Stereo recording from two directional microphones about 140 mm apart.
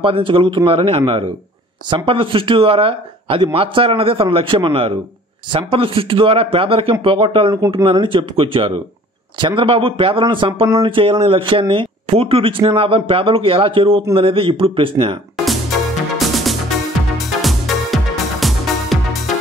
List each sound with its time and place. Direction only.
0.0 s speech: 40° right (ahead or behind)
15.3 s music: centre (ahead or behind)